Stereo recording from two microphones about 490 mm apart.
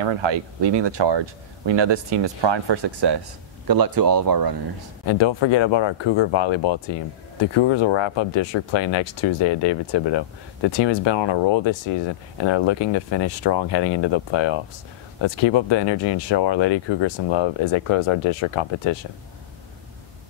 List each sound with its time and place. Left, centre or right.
0.0 s speech: right
5.0 s speech: left